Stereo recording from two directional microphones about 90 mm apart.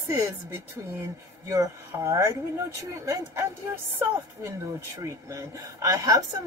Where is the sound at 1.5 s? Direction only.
35° right (ahead or behind).